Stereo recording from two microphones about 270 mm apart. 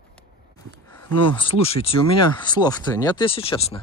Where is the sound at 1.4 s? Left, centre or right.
Left.